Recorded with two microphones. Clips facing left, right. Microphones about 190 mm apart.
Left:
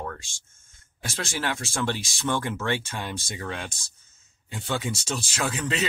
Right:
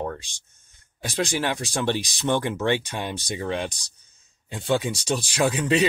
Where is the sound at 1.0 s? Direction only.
15° right (ahead or behind).